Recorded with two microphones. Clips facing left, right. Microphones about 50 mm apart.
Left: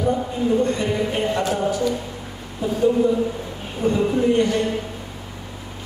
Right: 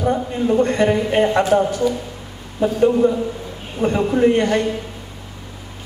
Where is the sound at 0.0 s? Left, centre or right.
Right.